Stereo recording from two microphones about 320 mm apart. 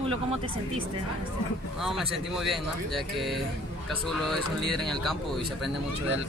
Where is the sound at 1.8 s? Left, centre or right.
Centre.